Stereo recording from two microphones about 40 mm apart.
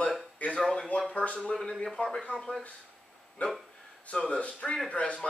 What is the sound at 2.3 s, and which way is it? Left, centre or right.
Speech, centre.